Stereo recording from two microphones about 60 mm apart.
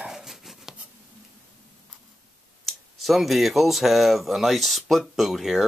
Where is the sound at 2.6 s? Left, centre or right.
Centre.